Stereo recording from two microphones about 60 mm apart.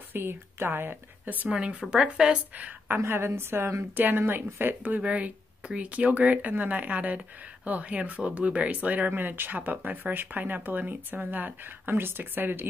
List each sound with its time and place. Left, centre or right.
0.1 s speech: right
1.5 s speech: centre
2.5 s a woman's voice: right
3.0 s a woman's voice: right
3.9 s speech: right